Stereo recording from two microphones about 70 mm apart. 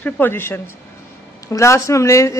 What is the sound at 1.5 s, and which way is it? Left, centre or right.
Speech, left.